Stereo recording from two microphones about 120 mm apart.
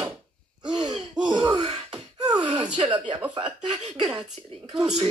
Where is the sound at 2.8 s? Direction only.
40° right (ahead or behind).